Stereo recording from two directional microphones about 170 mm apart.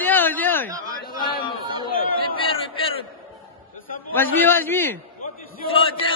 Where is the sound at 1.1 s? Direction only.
60° left (ahead or behind).